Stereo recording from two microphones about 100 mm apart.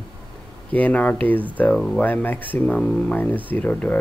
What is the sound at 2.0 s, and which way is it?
Speech, 15° left (ahead or behind).